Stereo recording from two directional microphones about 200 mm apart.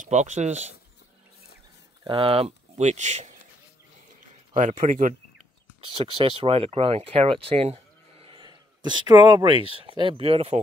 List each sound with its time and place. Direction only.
0.0 s speech: 35° right (ahead or behind)
2.0 s speech: 25° right (ahead or behind)
4.6 s speech: 40° right (ahead or behind)
5.8 s speech: 25° right (ahead or behind)